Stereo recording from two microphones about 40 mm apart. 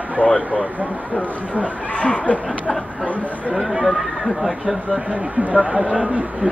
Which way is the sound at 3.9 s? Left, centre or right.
Centre.